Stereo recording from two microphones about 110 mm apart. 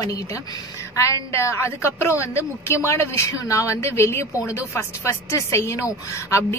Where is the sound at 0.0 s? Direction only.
30° left (ahead or behind).